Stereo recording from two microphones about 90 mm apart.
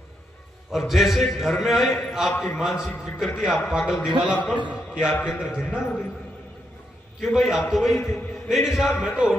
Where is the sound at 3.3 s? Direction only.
5° left (ahead or behind).